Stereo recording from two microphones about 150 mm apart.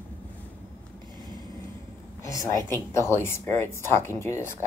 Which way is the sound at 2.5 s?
15° left (ahead or behind).